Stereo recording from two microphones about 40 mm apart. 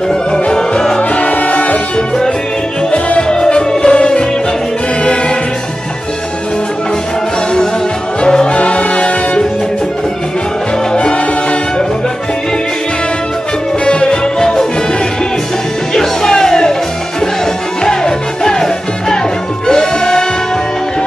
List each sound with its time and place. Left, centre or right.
0.1 s music: centre
1.2 s music: left
2.0 s music: centre
8.2 s music: left
13.8 s music: left
15.9 s music: centre
17.8 s music: centre